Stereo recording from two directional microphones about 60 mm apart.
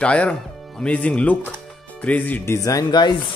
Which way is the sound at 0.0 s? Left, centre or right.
Centre.